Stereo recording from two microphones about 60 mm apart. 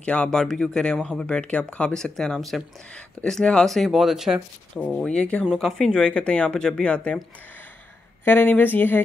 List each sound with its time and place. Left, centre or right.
0.0 s speech: centre
4.7 s speech: centre
5.6 s speech: centre
5.9 s speech: centre
8.3 s speech: left